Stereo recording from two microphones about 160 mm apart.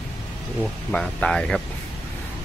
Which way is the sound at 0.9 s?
5° left (ahead or behind).